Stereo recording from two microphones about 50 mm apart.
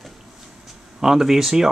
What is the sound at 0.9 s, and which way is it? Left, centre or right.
Speech, centre.